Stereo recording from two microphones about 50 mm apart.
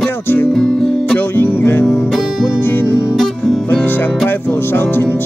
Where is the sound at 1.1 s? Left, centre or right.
Left.